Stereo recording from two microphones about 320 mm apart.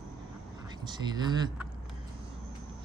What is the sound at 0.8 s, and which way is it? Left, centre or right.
Speech, centre.